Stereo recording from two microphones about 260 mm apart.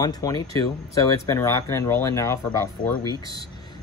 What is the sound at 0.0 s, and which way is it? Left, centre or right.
Speech, centre.